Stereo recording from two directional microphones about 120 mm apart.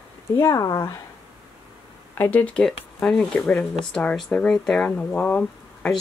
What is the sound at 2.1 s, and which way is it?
A woman's voice, 15° left (ahead or behind).